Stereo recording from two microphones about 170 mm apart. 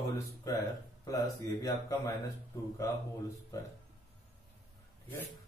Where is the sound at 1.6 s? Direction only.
20° left (ahead or behind).